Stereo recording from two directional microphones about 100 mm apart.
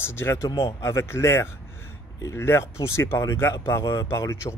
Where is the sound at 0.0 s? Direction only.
25° left (ahead or behind).